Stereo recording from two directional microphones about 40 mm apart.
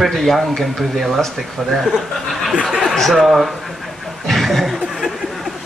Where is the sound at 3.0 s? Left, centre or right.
Centre.